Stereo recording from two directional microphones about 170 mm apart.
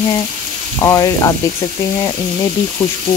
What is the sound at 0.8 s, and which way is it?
Speech, 15° left (ahead or behind).